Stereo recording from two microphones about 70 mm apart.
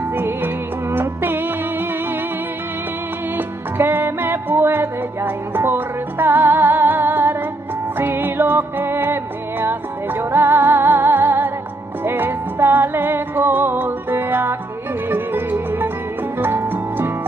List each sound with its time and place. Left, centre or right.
0.1 s music: right
3.3 s music: right